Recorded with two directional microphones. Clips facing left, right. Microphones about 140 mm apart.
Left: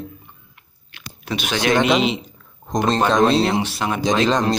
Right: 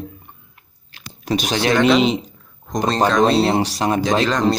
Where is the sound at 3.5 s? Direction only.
40° right (ahead or behind).